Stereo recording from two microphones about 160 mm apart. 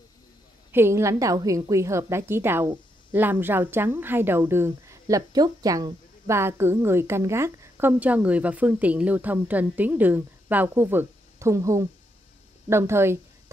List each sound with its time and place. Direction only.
0.7 s speech: 15° right (ahead or behind)